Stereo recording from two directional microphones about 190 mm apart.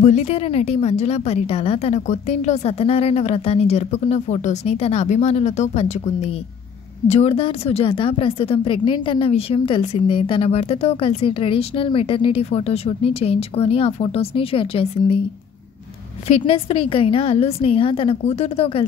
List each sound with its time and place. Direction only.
0.0 s a woman's voice: 35° left (ahead or behind)
16.3 s speech: 30° left (ahead or behind)